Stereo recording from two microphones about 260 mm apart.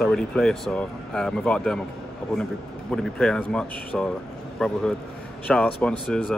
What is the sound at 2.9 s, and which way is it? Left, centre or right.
Speech, centre.